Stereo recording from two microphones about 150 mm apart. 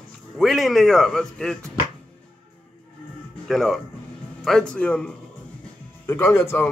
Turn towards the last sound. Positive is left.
turn(degrees=15)  # may be behind; listen again after turning